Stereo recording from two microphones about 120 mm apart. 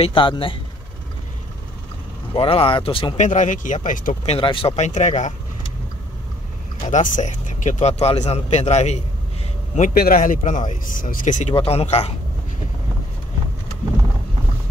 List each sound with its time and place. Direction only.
0.0 s speech: 45° left (ahead or behind)
2.3 s speech: 50° left (ahead or behind)
3.2 s speech: 90° left
4.4 s speech: 45° left (ahead or behind)
4.7 s speech: 75° left (ahead or behind)
6.9 s speech: 90° left; by 9.0 s 65° left (ahead or behind)
9.8 s speech: 90° left
11.5 s speech: 55° left (ahead or behind)